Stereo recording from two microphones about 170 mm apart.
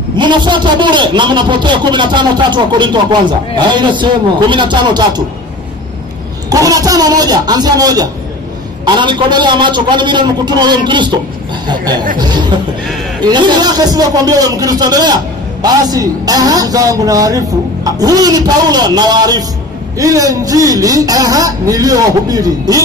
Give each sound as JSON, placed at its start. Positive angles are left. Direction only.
{"t": 0.1, "sound": "a man's voice", "side_deg": -25}
{"t": 6.5, "sound": "a man's voice", "side_deg": -20}